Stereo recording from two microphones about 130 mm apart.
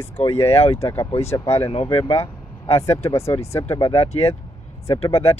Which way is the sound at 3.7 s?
45° left (ahead or behind).